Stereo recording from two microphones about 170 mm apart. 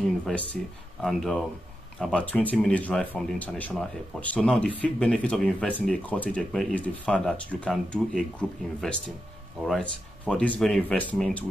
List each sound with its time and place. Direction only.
0.0 s speech: 5° left (ahead or behind)